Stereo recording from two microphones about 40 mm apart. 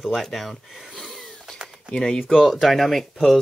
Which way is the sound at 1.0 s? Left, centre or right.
Centre.